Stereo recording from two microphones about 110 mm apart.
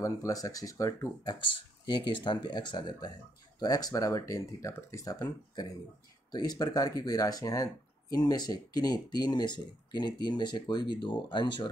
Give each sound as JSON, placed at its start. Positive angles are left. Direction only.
{"t": 0.0, "sound": "speech", "side_deg": 30}
{"t": 1.9, "sound": "speech", "side_deg": 45}